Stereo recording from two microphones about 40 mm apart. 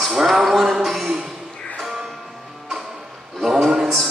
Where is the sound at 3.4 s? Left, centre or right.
Centre.